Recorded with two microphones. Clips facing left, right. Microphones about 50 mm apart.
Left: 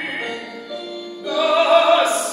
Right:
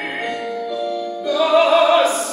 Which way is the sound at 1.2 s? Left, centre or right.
Centre.